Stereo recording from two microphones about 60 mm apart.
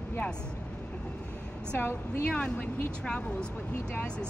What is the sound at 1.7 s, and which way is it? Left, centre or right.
Speech, left.